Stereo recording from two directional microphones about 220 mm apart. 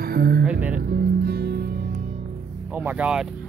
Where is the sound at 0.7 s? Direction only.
45° right (ahead or behind).